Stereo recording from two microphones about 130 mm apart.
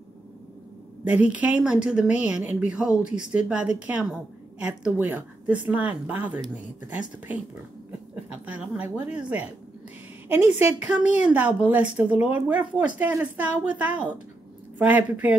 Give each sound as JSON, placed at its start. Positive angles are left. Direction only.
{"t": 1.0, "sound": "a woman's voice", "side_deg": -10}
{"t": 3.1, "sound": "speech", "side_deg": 70}
{"t": 3.3, "sound": "a woman's voice", "side_deg": -10}
{"t": 8.3, "sound": "a woman's voice", "side_deg": -10}